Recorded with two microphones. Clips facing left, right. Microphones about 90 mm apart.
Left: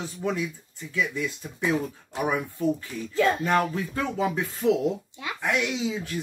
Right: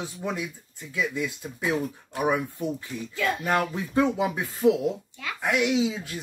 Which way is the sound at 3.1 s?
30° left (ahead or behind).